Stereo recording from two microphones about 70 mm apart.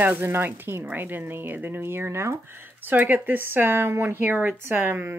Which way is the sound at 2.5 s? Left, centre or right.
Right.